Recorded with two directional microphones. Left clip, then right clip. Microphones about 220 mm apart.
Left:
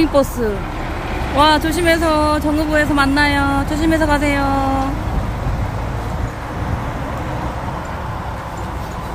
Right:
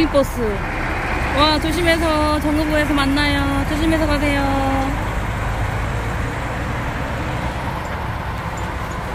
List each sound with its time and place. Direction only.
0.0 s speech: 15° left (ahead or behind)
1.3 s speech: 20° left (ahead or behind)